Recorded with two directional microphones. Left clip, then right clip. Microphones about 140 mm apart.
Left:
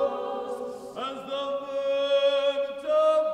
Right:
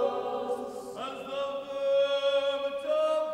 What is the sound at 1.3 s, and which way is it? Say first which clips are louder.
Chant: left 3 dB; 30° left (ahead or behind).